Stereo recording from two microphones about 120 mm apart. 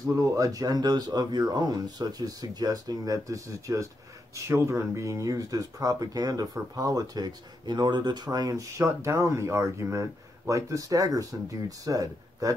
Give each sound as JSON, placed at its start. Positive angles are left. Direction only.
{"t": 0.0, "sound": "speech", "side_deg": -30}